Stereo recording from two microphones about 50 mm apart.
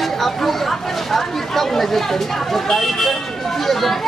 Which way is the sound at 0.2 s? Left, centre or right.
Centre.